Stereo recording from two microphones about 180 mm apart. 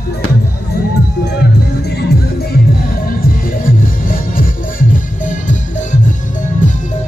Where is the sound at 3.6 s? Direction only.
50° left (ahead or behind).